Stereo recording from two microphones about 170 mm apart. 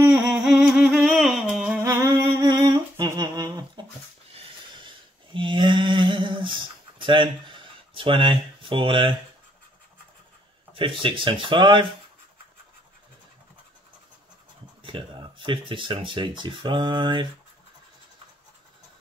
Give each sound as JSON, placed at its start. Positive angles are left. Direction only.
{"t": 0.0, "sound": "humming", "side_deg": -5}
{"t": 4.3, "sound": "a sound", "side_deg": -35}
{"t": 10.7, "sound": "speech", "side_deg": -30}
{"t": 14.8, "sound": "speech", "side_deg": -30}